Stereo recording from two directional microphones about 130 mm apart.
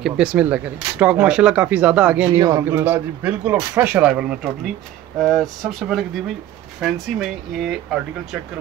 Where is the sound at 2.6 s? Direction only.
15° right (ahead or behind).